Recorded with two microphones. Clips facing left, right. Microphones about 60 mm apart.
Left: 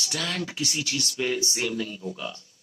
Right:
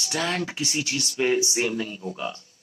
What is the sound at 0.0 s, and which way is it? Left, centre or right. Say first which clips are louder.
Speech: right 4 dB; right.